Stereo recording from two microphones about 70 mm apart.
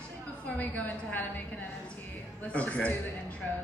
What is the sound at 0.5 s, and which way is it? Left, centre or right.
Speech, left.